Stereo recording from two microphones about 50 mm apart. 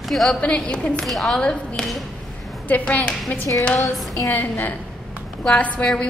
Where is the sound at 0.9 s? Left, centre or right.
Centre.